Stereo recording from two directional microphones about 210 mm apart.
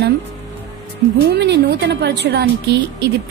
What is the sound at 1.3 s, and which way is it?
Speech, 55° right (ahead or behind).